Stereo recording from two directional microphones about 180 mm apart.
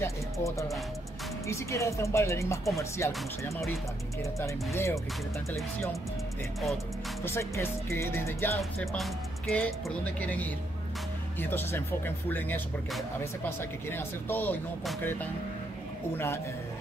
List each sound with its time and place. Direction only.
0.0 s music: 15° left (ahead or behind)
1.5 s speech: 15° left (ahead or behind)
4.2 s speech: 15° left (ahead or behind)
7.2 s speech: 15° left (ahead or behind)
8.9 s speech: centre (ahead or behind)